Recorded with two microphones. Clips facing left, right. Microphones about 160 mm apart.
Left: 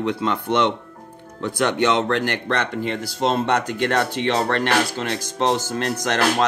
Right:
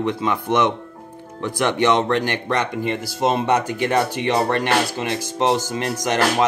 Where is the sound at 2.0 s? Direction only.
15° right (ahead or behind).